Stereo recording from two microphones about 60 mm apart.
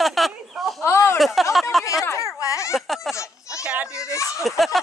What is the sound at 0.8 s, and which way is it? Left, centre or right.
Speech, left.